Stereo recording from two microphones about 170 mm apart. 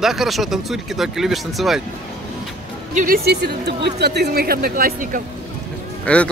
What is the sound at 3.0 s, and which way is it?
Speech, 60° right (ahead or behind).